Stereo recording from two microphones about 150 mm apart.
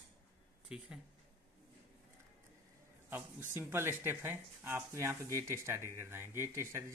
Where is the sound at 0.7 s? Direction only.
5° right (ahead or behind).